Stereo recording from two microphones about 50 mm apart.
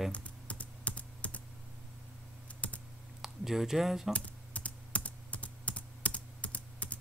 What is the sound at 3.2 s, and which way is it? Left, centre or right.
Speech, centre.